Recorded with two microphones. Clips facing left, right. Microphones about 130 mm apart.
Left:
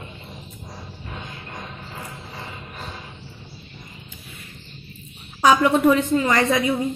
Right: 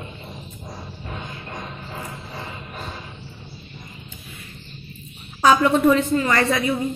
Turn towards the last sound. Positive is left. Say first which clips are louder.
# left 1 dB
turn(degrees=15)  # may be behind; listen again after turning